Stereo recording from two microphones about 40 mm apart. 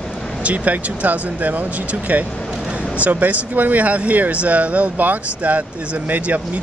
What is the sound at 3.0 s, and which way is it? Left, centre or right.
Speech, right.